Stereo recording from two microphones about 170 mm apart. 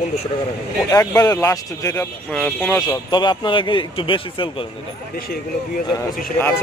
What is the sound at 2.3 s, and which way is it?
Speech, 5° left (ahead or behind).